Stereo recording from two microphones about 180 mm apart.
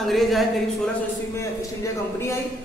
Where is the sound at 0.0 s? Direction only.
Centre (ahead or behind).